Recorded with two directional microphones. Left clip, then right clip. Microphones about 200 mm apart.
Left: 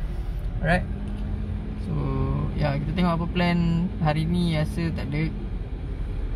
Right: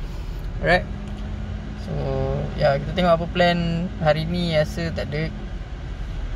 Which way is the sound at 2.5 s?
Centre (ahead or behind).